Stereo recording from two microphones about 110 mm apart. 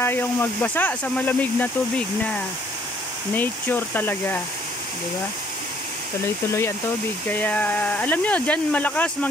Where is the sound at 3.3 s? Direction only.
15° left (ahead or behind).